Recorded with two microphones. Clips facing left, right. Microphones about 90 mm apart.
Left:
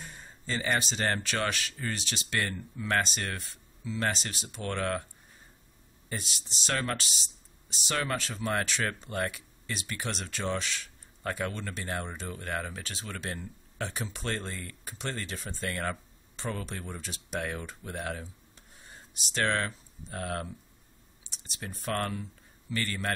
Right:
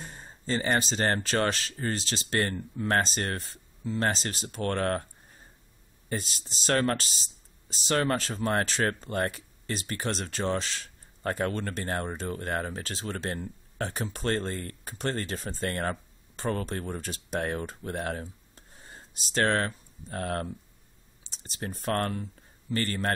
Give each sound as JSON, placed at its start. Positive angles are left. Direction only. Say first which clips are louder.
{"t": 0.0, "sound": "speech", "louder": "right 3 dB", "side_deg": -40}
{"t": 6.0, "sound": "speech", "louder": "right 5 dB", "side_deg": -40}